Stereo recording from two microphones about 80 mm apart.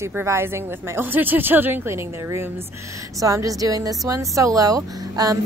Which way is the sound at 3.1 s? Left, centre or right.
Right.